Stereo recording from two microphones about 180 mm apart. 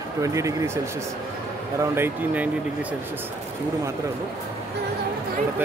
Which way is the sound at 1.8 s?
15° right (ahead or behind).